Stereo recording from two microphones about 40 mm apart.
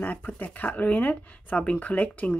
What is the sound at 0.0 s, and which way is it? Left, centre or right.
Speech, left.